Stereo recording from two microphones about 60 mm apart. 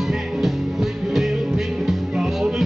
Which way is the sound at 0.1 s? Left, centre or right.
Centre.